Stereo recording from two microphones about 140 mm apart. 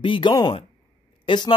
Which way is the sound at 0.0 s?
35° left (ahead or behind).